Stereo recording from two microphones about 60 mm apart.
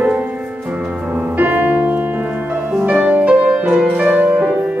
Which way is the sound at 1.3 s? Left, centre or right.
Right.